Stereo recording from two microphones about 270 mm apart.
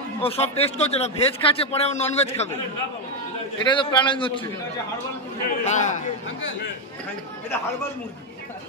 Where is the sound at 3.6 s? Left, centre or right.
Centre.